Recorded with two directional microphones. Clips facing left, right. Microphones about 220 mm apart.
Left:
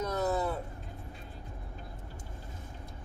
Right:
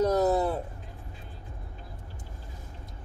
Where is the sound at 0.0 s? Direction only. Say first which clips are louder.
Right 7 dB; 35° right (ahead or behind).